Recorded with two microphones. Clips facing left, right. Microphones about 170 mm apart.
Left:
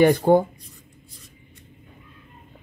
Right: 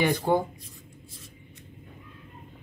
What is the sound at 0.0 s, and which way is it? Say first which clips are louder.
Speech: left 8 dB; 50° left (ahead or behind).